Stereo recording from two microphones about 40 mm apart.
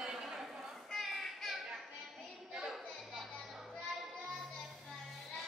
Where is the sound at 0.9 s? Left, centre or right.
Centre.